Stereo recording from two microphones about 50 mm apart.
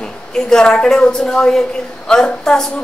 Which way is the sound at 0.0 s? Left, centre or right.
Centre.